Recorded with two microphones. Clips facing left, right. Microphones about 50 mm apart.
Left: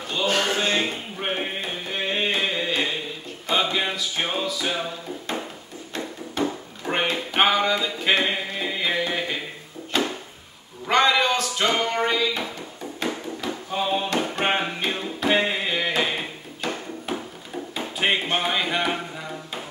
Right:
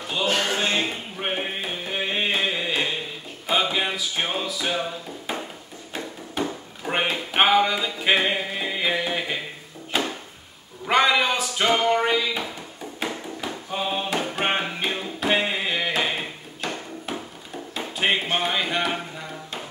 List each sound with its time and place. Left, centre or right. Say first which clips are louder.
0.0 s a sound: left 1 dB; centre
3.4 s music: even; centre
6.4 s chop: left 2 dB; centre
6.8 s music: even; centre
9.9 s a sound: left 1 dB; centre
13.0 s music: left 2 dB; centre